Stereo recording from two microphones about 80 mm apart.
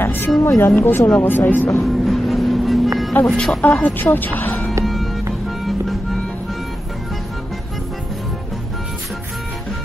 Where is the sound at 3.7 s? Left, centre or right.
Left.